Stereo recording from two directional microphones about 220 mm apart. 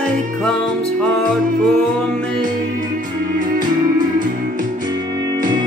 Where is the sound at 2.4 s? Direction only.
35° right (ahead or behind).